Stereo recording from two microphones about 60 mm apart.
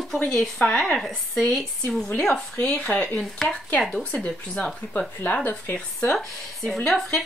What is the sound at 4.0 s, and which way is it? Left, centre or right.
Speech, centre.